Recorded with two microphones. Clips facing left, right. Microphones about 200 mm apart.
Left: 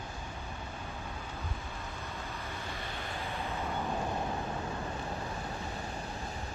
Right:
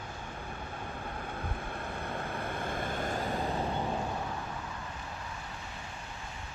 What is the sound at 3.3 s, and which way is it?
Vehicle, 30° right (ahead or behind).